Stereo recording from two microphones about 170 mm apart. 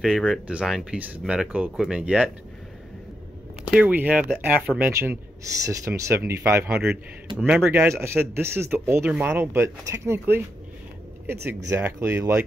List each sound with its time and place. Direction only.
0.0 s speech: centre (ahead or behind)
3.7 s speech: 10° right (ahead or behind)
7.3 s speech: 5° right (ahead or behind)
11.7 s speech: 15° right (ahead or behind)